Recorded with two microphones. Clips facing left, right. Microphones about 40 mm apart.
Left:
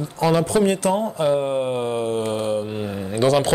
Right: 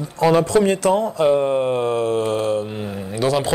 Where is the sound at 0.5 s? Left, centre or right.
Right.